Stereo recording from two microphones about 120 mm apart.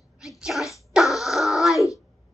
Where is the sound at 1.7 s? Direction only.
25° left (ahead or behind).